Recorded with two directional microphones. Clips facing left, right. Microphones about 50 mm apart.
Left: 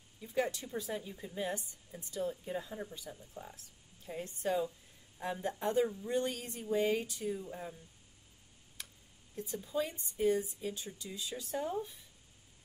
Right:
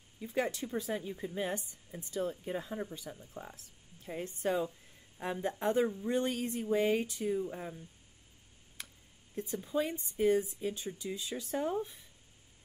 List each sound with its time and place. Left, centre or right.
0.3 s speech: right
9.7 s speech: right